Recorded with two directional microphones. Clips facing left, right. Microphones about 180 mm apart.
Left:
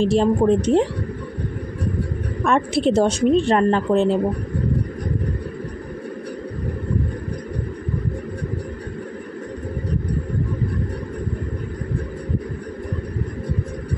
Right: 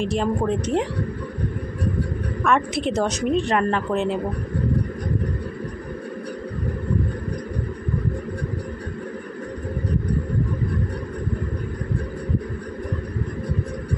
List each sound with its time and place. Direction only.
0.0 s a woman's voice: 30° left (ahead or behind)
2.4 s speech: 30° left (ahead or behind)